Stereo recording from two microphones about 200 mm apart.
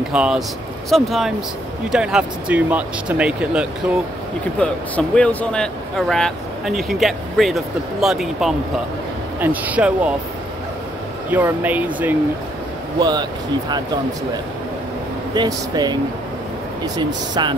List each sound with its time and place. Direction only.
0.1 s speech: 5° right (ahead or behind)
4.6 s speech: 5° left (ahead or behind)
11.2 s speech: 10° right (ahead or behind)
13.0 s speech: 20° right (ahead or behind)
15.3 s speech: 20° right (ahead or behind)